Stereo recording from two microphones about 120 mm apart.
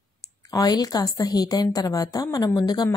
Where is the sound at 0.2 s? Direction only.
30° left (ahead or behind).